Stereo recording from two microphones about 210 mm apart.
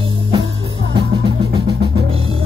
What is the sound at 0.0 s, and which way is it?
Music, 25° right (ahead or behind).